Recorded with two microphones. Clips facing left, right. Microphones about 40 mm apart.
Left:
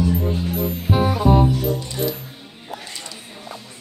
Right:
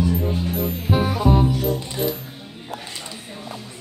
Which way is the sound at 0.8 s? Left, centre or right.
Centre.